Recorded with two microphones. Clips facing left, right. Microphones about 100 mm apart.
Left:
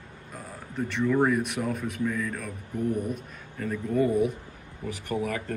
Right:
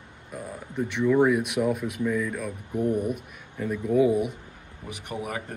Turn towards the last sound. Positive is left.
turn(degrees=-15)  # may be behind; listen again after turning